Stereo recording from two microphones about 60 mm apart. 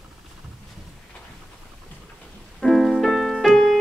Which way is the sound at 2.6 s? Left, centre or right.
Centre.